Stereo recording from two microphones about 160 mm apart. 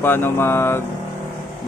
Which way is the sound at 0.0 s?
15° left (ahead or behind).